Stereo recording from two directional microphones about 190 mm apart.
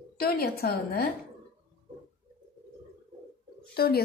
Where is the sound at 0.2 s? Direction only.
55° left (ahead or behind).